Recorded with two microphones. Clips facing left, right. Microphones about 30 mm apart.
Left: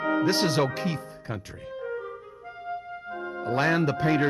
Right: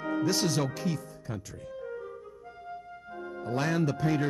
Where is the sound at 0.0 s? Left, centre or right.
Left.